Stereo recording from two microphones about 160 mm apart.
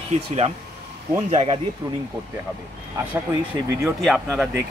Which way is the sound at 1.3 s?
35° right (ahead or behind).